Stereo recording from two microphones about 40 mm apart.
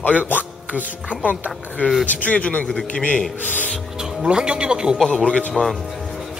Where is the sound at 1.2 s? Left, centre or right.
Right.